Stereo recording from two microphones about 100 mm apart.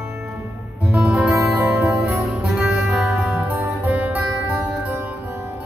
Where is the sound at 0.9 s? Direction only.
10° right (ahead or behind).